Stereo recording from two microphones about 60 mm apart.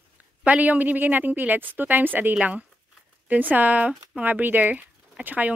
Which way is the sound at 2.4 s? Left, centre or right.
Right.